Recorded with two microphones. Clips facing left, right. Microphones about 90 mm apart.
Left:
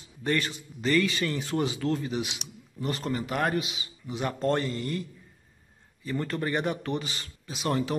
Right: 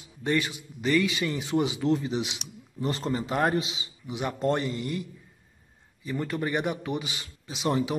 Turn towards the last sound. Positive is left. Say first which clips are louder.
# right 1 dB
turn(degrees=-10)  # may be behind; listen again after turning